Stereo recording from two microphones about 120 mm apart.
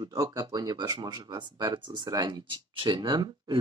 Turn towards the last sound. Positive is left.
turn(degrees=-40)  # may be behind; listen again after turning